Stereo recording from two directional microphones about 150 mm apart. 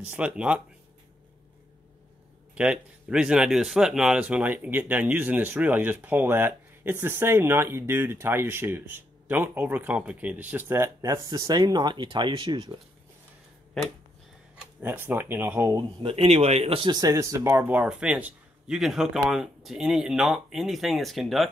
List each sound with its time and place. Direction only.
0.0 s speech: 10° right (ahead or behind)
2.5 s speech: 5° right (ahead or behind); by 12.8 s 30° right (ahead or behind)
14.8 s speech: 15° right (ahead or behind)
16.0 s speech: 40° right (ahead or behind); by 21.5 s centre (ahead or behind)